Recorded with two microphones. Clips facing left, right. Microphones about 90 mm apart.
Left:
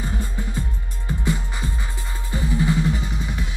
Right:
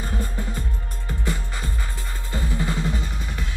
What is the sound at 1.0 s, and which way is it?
Music, 20° left (ahead or behind).